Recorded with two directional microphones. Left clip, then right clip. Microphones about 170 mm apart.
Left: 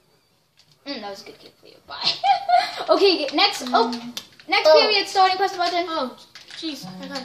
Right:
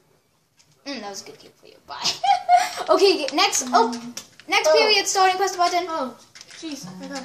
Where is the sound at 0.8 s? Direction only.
25° right (ahead or behind).